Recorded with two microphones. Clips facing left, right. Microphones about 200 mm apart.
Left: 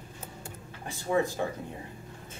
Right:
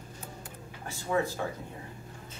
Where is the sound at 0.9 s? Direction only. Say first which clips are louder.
Left 2 dB; 15° left (ahead or behind).